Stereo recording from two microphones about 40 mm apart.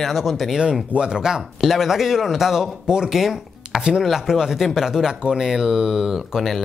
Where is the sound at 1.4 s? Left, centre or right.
Centre.